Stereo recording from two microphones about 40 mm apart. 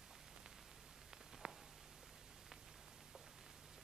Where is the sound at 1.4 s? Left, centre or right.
Right.